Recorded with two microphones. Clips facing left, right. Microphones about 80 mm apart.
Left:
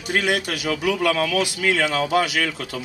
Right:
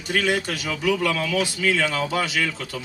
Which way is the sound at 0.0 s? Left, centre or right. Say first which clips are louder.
Left 1 dB; centre.